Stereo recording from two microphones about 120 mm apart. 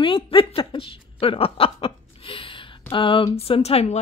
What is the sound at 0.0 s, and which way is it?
Chuckle, 45° left (ahead or behind).